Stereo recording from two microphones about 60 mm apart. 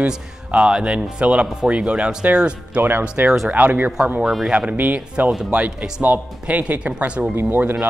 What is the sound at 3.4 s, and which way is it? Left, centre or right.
Speech, right.